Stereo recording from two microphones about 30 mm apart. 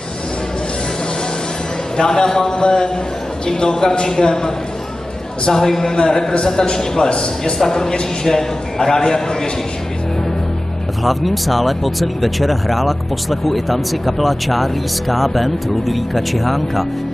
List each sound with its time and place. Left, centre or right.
2.0 s a man's voice: left
5.5 s a man's voice: centre; by 7.5 s left
7.5 s a man's voice: centre
11.1 s speech: centre